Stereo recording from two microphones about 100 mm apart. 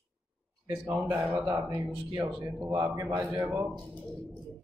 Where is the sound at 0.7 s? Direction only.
20° right (ahead or behind).